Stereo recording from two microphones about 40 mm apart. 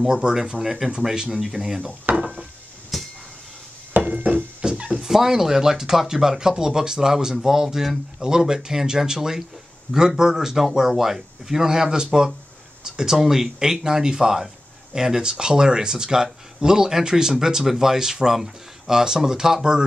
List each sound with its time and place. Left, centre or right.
0.0 s speech: centre
2.1 s wood: right
2.9 s a sound: centre
4.1 s a sound: right
4.7 s dog: right
5.0 s speech: centre